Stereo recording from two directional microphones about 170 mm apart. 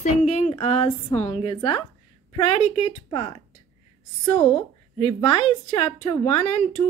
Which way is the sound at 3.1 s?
25° left (ahead or behind).